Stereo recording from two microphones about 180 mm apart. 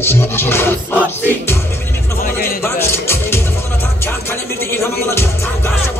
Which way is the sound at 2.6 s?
15° left (ahead or behind).